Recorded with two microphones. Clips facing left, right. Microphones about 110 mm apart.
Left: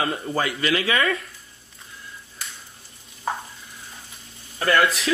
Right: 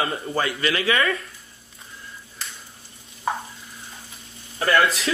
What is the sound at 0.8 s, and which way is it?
Speech, 30° left (ahead or behind).